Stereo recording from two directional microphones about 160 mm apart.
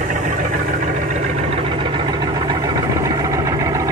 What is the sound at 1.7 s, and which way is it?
Vehicle, 30° right (ahead or behind).